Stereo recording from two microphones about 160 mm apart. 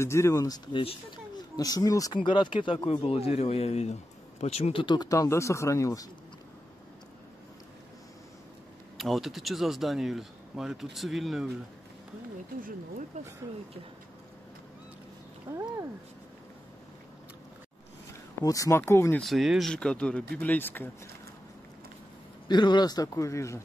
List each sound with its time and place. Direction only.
0.0 s a man's voice: 15° left (ahead or behind)
8.9 s speech: centre (ahead or behind)
13.1 s speech: 50° right (ahead or behind)
15.5 s speech: 10° right (ahead or behind)
18.4 s speech: 20° left (ahead or behind)
19.2 s speech: centre (ahead or behind)
22.5 s a man's voice: 30° left (ahead or behind)